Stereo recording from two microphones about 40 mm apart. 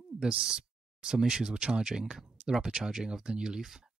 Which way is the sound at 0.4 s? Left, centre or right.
Right.